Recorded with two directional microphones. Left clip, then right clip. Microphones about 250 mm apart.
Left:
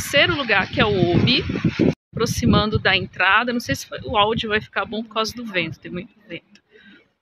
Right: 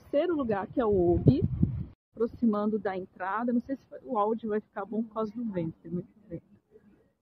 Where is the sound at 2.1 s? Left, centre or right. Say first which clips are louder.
Left 7 dB; centre.